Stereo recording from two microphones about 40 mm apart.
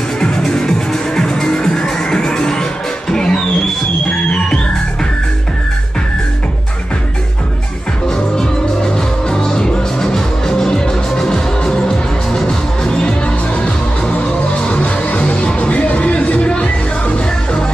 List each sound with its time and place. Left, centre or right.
0.2 s music: centre
8.1 s music: centre
14.1 s music: left